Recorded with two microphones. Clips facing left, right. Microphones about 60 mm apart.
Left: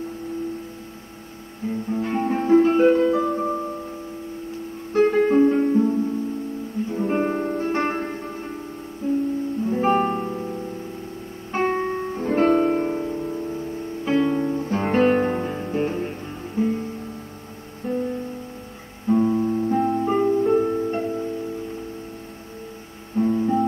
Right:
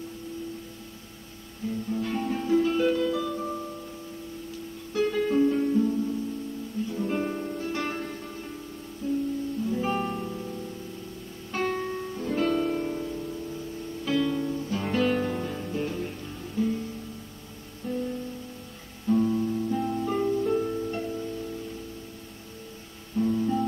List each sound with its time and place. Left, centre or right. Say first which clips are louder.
1.7 s music: left 5 dB; left
4.9 s guitar: left 7 dB; left
6.9 s music: left 7 dB; left
17.8 s music: left 6 dB; left
19.0 s music: left 5 dB; left
23.1 s music: left 5 dB; left